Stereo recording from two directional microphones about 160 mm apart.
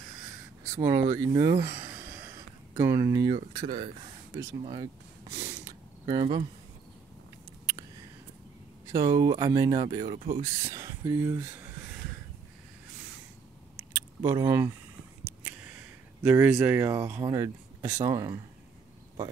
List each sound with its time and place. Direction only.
0.7 s speech: 25° right (ahead or behind)
1.6 s a sound: 15° right (ahead or behind)
2.8 s speech: 20° right (ahead or behind)
5.3 s a sound: 20° right (ahead or behind)
8.8 s speech: 30° right (ahead or behind)
10.4 s speech: 20° right (ahead or behind)
14.2 s speech: 25° right (ahead or behind)
15.2 s a sound: 10° right (ahead or behind)
16.2 s speech: 10° right (ahead or behind)